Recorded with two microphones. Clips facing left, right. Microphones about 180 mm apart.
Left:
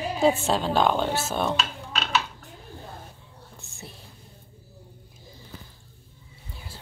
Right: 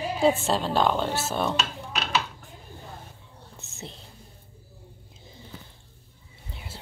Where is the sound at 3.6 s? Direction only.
20° right (ahead or behind).